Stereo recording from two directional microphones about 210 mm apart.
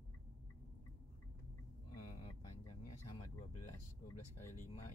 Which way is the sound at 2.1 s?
25° left (ahead or behind).